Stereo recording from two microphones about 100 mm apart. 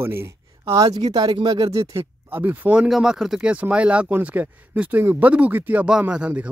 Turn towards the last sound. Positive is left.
turn(degrees=-10)  # may be behind; listen again after turning